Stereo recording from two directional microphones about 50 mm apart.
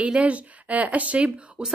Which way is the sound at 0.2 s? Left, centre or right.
Right.